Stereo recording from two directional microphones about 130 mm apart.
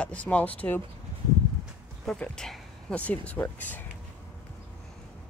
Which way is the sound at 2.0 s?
5° left (ahead or behind).